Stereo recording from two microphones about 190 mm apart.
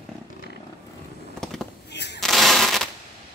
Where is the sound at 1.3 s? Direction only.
Centre (ahead or behind).